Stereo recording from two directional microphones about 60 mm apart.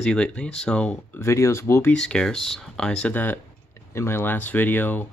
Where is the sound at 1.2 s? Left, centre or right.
Left.